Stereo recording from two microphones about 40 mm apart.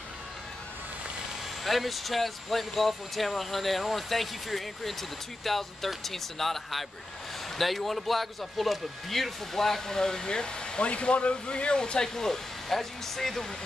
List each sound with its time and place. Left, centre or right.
1.6 s speech: centre